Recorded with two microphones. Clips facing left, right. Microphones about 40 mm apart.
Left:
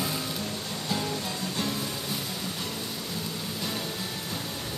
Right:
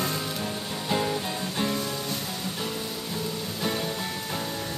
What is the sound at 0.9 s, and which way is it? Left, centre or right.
Music, right.